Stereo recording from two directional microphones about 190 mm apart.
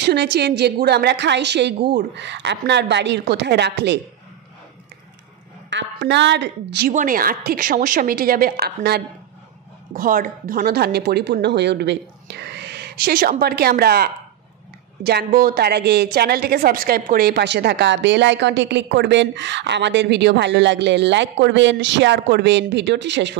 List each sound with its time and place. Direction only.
0.0 s speech: 60° right (ahead or behind)
5.7 s a woman's voice: 70° right (ahead or behind)
6.9 s a woman's voice: 45° right (ahead or behind); by 23.3 s 65° right (ahead or behind)